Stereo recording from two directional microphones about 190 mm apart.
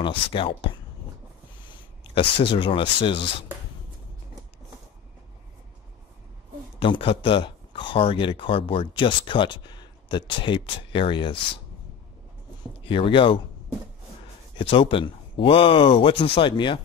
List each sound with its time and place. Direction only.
0.0 s speech: 30° left (ahead or behind)
2.1 s speech: 25° left (ahead or behind)
6.8 s speech: 25° left (ahead or behind)
12.8 s speech: 25° left (ahead or behind)
14.6 s speech: 25° left (ahead or behind)